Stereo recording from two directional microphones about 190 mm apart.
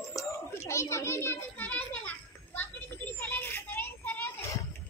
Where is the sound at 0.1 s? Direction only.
15° left (ahead or behind).